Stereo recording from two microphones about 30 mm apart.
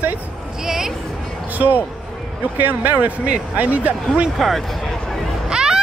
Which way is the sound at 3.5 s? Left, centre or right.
Right.